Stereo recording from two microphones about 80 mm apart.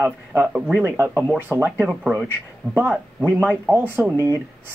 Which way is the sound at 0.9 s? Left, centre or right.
Right.